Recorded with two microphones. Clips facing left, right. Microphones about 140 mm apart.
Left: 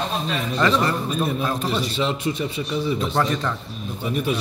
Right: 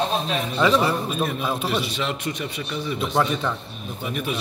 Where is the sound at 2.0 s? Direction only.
25° left (ahead or behind).